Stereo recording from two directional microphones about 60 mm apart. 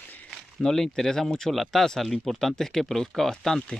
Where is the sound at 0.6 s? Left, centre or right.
Centre.